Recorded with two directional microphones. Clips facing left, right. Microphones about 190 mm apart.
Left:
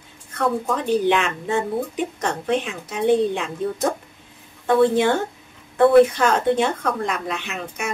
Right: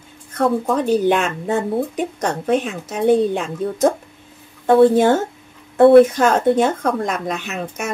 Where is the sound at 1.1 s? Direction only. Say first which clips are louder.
Right 3 dB; 45° right (ahead or behind).